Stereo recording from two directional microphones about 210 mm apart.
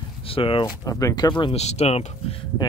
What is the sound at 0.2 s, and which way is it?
Speech, 25° left (ahead or behind).